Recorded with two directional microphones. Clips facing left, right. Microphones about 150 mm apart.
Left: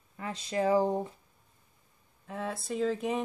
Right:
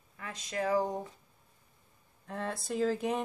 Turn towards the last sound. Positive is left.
turn(degrees=0)  # may be behind; listen again after turning